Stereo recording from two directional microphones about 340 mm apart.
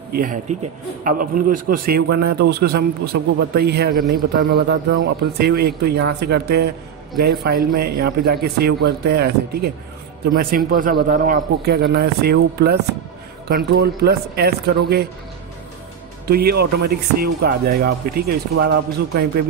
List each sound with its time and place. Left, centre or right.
0.1 s a man's voice: right
7.7 s a man's voice: right
16.3 s a man's voice: right